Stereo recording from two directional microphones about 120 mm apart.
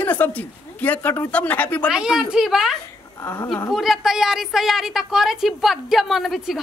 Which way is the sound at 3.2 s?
25° left (ahead or behind).